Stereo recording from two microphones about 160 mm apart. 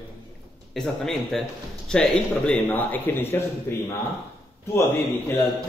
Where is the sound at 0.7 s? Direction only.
5° left (ahead or behind).